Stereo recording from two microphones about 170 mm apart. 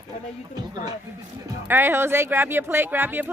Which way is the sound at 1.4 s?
15° right (ahead or behind).